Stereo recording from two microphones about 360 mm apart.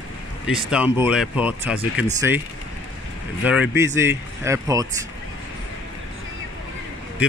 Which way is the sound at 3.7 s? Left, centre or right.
Centre.